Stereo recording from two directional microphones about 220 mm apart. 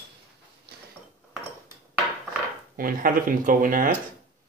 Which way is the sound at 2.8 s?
40° right (ahead or behind).